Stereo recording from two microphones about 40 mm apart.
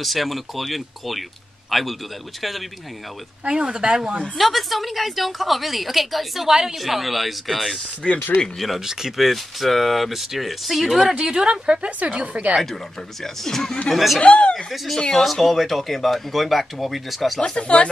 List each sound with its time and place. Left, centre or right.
0.0 s a woman's voice: centre
3.4 s speech: right
4.4 s a woman's voice: centre
8.0 s speech: centre
8.5 s a woman's voice: centre; by 12.5 s right
13.2 s speech: centre
13.8 s a woman's voice: centre
14.2 s speech: left
15.0 s a woman's voice: centre
17.4 s speech: left